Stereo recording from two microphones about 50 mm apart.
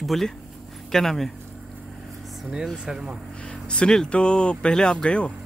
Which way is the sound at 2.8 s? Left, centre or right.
Centre.